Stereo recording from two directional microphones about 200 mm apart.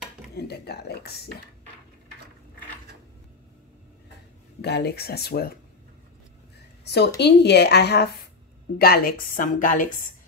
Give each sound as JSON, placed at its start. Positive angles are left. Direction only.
{"t": 0.3, "sound": "speech", "side_deg": 55}
{"t": 4.6, "sound": "a woman's voice", "side_deg": 55}
{"t": 6.8, "sound": "a sound", "side_deg": 55}
{"t": 7.2, "sound": "a woman's voice", "side_deg": 55}